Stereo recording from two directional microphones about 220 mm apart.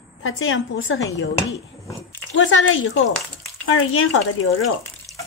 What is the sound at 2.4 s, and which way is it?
A woman's voice, 60° left (ahead or behind).